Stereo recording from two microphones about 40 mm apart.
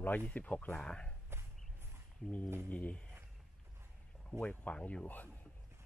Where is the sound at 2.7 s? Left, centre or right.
Left.